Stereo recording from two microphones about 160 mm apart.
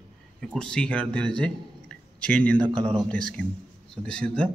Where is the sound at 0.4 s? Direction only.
5° left (ahead or behind).